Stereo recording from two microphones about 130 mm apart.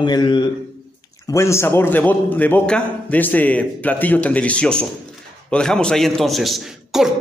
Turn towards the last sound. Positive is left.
turn(degrees=0)  # may be behind; listen again after turning